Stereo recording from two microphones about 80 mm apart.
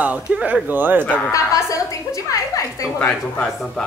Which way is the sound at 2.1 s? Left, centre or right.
Left.